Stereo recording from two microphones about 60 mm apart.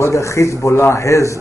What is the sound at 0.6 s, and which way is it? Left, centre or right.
Speech, left.